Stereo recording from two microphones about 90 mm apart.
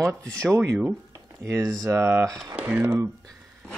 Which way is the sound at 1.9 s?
30° right (ahead or behind).